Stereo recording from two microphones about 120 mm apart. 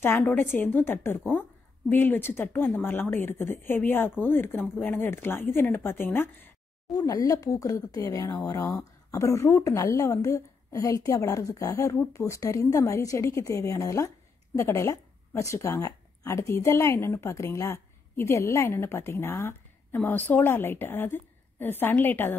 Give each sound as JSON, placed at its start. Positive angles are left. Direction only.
{"t": 0.2, "sound": "speech", "side_deg": 15}
{"t": 6.9, "sound": "speech", "side_deg": 30}